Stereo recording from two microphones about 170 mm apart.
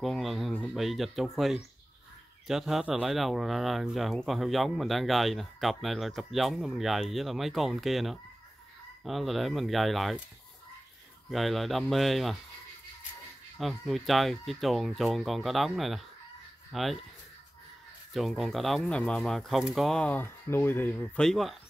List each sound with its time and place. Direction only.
0.0 s speech: centre (ahead or behind)
11.2 s speech: centre (ahead or behind)
13.6 s speech: centre (ahead or behind)
18.1 s speech: centre (ahead or behind)